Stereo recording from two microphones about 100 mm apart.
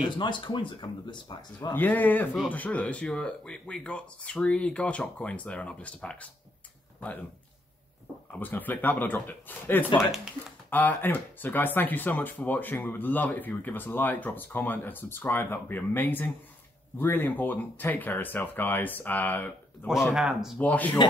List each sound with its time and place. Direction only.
0.2 s speech: 50° left (ahead or behind)
1.7 s speech: 20° left (ahead or behind)
8.3 s speech: 20° left (ahead or behind)
20.2 s speech: 5° right (ahead or behind)
20.5 s speech: 15° left (ahead or behind)